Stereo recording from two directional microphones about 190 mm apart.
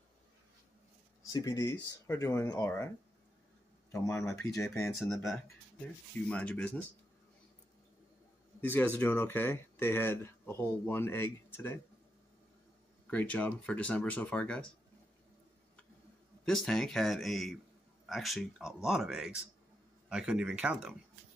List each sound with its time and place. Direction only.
1.3 s speech: 15° left (ahead or behind)
3.9 s speech: 15° left (ahead or behind)
4.6 s speech: 5° left (ahead or behind)
8.5 s speech: 10° left (ahead or behind)
13.0 s speech: 10° left (ahead or behind)
16.4 s speech: 5° left (ahead or behind)